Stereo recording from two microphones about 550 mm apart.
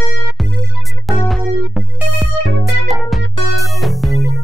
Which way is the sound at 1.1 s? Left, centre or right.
Centre.